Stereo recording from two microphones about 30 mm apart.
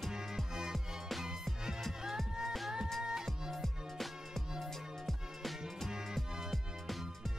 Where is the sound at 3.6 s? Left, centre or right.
Centre.